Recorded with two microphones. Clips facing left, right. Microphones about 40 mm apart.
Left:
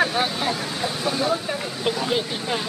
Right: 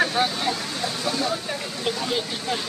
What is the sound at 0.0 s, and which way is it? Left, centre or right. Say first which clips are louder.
Speech: even; centre.